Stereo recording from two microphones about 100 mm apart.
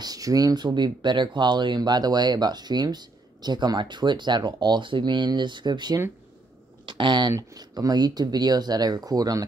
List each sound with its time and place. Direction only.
0.0 s speech: 40° right (ahead or behind)
7.3 s speech: 40° right (ahead or behind)